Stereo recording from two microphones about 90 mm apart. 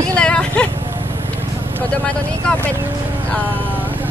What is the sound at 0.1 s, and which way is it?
Vehicle, 10° left (ahead or behind).